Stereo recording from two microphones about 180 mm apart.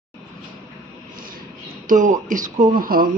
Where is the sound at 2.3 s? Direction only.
45° right (ahead or behind).